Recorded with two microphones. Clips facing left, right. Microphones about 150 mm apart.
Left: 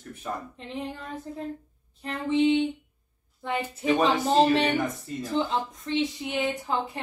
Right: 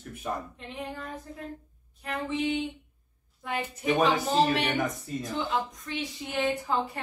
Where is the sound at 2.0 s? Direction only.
30° left (ahead or behind).